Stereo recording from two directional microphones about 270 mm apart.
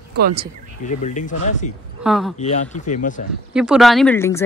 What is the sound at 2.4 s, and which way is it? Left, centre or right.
Speech, left.